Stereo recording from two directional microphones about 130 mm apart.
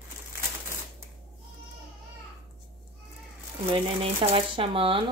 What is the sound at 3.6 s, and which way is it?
Speech, 45° right (ahead or behind).